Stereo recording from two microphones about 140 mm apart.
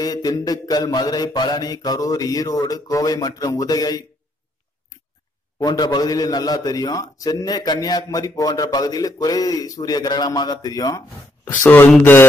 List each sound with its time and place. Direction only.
0.0 s a man's voice: 30° left (ahead or behind)
5.6 s a man's voice: 30° left (ahead or behind); by 12.3 s 15° left (ahead or behind)